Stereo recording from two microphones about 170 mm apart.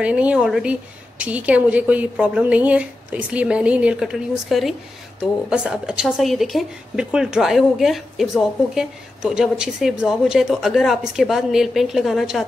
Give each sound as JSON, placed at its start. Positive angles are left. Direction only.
{"t": 0.0, "sound": "a woman's voice", "side_deg": -5}